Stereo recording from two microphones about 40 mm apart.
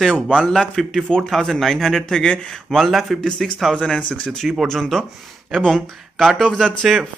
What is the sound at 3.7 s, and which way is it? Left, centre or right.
Speech, left.